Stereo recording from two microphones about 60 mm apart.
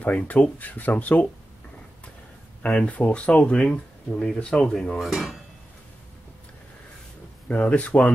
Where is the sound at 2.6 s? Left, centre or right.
Centre.